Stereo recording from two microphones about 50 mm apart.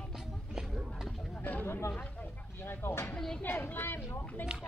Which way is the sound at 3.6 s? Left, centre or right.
Left.